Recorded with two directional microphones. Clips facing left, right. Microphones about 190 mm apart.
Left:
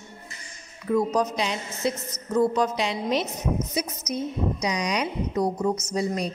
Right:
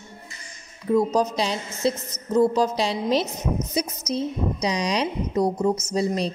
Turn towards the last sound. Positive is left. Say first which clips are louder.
# right 3 dB
turn(degrees=-30)  # may be behind; listen again after turning